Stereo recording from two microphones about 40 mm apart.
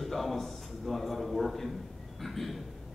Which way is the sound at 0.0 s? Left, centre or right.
Centre.